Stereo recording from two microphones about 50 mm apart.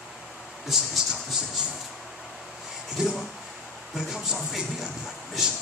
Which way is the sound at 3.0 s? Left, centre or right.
Centre.